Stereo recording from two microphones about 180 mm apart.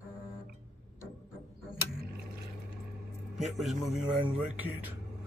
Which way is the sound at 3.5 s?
Centre (ahead or behind).